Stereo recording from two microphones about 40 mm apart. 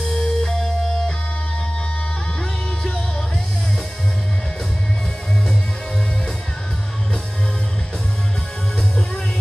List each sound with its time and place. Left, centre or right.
0.2 s music: centre